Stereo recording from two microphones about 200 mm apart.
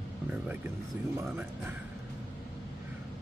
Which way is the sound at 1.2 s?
10° right (ahead or behind).